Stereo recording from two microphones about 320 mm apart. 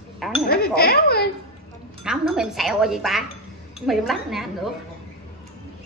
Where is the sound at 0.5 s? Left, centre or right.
Left.